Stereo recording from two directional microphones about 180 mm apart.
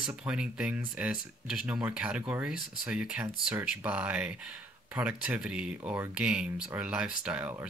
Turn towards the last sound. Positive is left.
turn(degrees=-10)  # may be behind; listen again after turning